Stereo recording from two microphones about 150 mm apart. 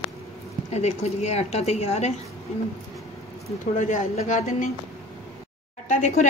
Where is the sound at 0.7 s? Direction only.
45° left (ahead or behind).